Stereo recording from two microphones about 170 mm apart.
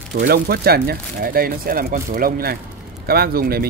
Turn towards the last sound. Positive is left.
turn(degrees=-60)  # may be behind; listen again after turning